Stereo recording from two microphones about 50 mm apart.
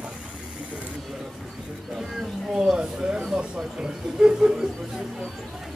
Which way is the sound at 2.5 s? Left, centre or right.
Centre.